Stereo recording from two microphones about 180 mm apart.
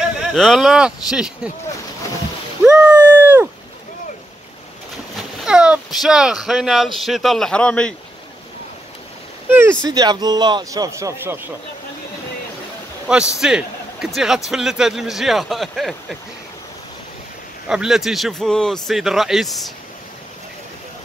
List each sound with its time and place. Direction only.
0.3 s speech: centre (ahead or behind)
2.6 s a sound: 5° right (ahead or behind)
5.4 s speech: 5° right (ahead or behind)
9.5 s a sound: 10° right (ahead or behind)
9.8 s speech: 20° right (ahead or behind)
13.4 s speech: 5° right (ahead or behind)
17.6 s speech: 5° right (ahead or behind)